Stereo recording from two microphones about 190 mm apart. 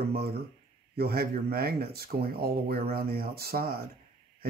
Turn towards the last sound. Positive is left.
turn(degrees=-50)  # may be behind; listen again after turning